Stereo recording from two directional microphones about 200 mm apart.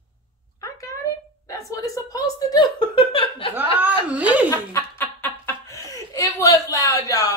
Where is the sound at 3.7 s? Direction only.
10° right (ahead or behind).